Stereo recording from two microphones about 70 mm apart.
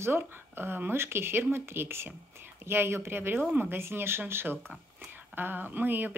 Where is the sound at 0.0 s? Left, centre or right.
Right.